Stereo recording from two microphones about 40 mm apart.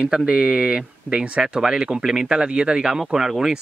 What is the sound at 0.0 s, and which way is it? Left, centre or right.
Speech, right.